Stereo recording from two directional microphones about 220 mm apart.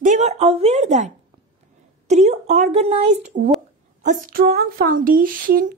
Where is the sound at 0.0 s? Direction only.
35° right (ahead or behind).